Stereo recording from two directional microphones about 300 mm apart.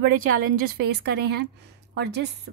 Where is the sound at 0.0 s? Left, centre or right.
Right.